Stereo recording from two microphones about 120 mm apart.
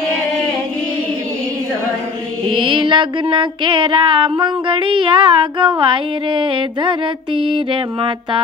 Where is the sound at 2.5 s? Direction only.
45° right (ahead or behind).